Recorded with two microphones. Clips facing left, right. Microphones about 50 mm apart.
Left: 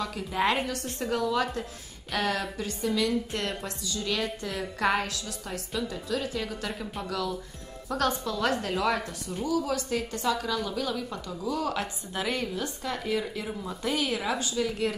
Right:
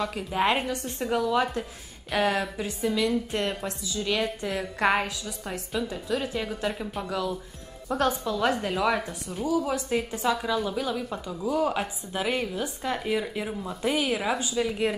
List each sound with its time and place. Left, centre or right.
0.0 s a woman's voice: centre
13.5 s a woman's voice: centre